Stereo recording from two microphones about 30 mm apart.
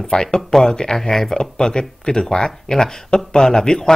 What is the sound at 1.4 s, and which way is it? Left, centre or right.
Speech, left.